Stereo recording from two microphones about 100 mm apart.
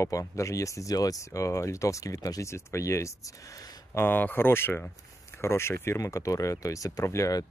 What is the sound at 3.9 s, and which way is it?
Speech, 20° left (ahead or behind).